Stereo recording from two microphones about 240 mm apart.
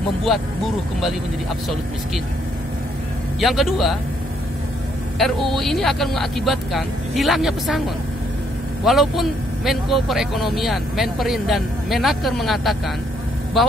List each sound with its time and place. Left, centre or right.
0.3 s a man's voice: centre
3.3 s a man's voice: centre
5.2 s a man's voice: centre
8.8 s a man's voice: centre